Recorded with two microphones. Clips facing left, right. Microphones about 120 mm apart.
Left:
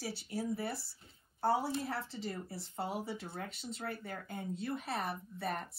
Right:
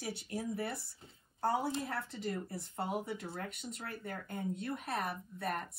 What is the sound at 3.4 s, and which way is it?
Speech, 55° right (ahead or behind).